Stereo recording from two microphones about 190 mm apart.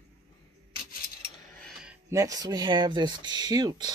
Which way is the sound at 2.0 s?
15° right (ahead or behind).